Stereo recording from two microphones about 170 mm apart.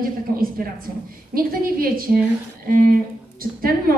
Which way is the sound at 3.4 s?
60° right (ahead or behind).